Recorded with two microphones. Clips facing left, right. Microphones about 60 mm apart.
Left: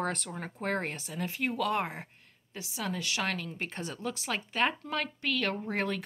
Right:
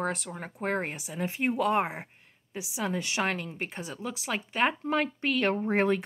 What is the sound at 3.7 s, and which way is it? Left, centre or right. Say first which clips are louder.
Speech: even; centre.